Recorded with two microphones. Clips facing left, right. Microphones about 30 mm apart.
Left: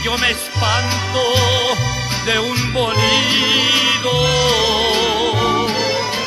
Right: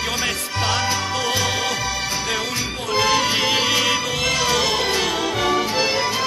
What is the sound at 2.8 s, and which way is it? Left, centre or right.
Music, left.